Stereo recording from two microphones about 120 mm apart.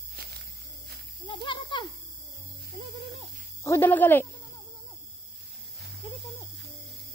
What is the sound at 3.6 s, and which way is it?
Speech, 20° left (ahead or behind).